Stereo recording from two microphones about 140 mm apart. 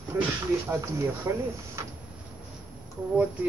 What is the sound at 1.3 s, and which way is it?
Speech, 20° right (ahead or behind).